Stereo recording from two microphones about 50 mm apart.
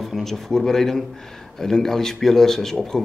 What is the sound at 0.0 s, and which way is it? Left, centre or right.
Speech, centre.